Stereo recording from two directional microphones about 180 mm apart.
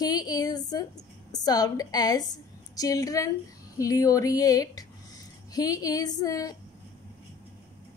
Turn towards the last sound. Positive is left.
turn(degrees=20)  # may be behind; listen again after turning